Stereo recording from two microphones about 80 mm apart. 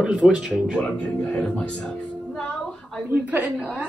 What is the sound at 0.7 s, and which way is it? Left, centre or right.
A woman's voice, centre.